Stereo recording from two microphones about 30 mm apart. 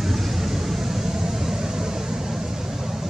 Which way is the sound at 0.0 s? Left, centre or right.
Centre.